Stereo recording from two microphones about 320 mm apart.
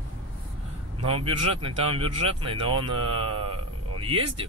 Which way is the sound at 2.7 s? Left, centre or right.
Right.